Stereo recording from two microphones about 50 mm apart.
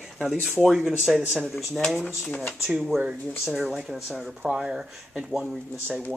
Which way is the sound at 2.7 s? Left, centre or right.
Centre.